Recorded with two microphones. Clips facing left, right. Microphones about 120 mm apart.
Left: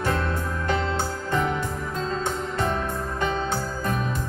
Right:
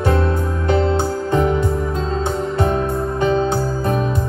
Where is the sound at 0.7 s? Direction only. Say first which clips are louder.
Right 9 dB; 30° right (ahead or behind).